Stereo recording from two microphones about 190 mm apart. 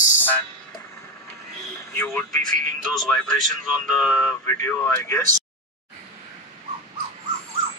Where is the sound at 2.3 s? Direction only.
45° right (ahead or behind).